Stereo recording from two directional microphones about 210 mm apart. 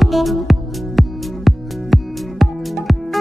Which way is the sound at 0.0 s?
Centre (ahead or behind).